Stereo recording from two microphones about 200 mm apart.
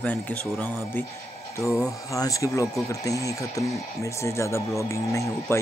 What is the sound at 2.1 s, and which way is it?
Speech, 15° left (ahead or behind).